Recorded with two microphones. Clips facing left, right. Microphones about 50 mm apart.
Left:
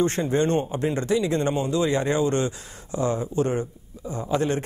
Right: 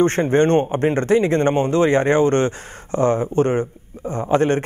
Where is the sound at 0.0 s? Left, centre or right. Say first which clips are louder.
Right 6 dB; right.